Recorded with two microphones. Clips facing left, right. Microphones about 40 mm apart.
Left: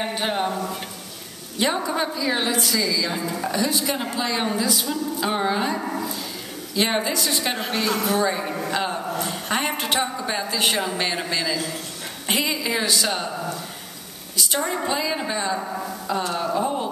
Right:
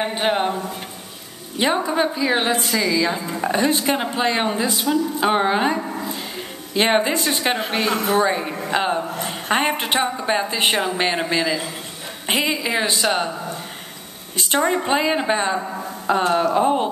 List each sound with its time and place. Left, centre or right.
0.0 s a man's voice: right